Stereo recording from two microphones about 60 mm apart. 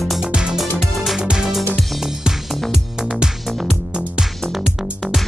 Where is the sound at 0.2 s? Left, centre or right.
Centre.